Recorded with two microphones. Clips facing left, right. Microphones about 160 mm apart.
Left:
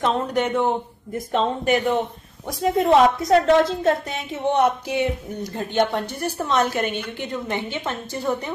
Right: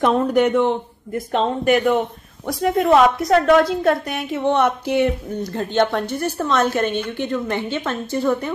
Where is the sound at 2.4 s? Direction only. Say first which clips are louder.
Right 2 dB; 75° right (ahead or behind).